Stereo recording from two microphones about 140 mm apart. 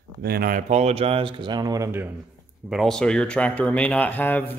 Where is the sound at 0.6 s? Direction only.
50° right (ahead or behind); by 2.1 s 20° right (ahead or behind).